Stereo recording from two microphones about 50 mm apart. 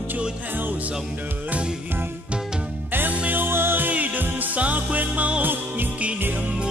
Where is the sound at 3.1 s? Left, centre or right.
Right.